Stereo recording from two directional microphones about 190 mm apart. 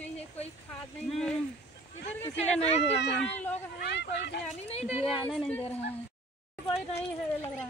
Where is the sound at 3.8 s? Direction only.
65° left (ahead or behind).